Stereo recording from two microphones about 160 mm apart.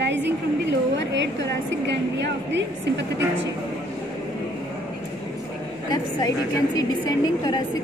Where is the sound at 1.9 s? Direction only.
90° right.